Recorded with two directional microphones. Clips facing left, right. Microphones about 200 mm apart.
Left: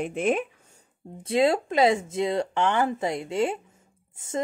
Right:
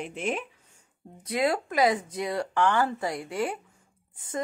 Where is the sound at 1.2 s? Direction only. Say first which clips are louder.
Left 5 dB; 25° left (ahead or behind).